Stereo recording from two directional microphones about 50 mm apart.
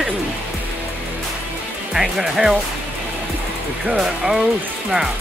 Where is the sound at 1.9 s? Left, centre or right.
Centre.